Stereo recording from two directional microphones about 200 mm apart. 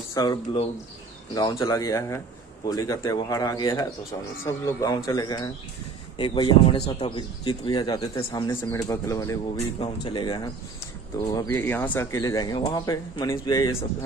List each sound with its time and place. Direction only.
0.1 s speech: 20° left (ahead or behind)